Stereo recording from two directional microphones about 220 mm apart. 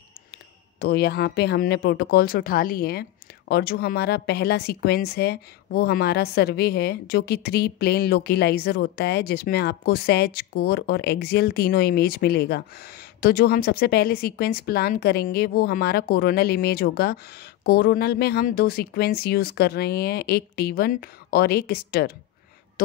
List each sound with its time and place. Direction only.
0.3 s speech: 45° left (ahead or behind)